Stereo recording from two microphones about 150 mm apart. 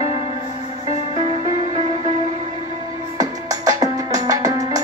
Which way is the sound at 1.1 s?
50° right (ahead or behind).